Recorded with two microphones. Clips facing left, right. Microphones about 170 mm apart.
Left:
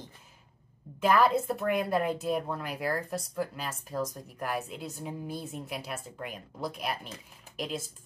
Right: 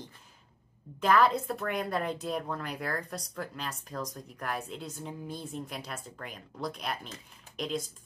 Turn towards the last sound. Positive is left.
turn(degrees=5)  # may be behind; listen again after turning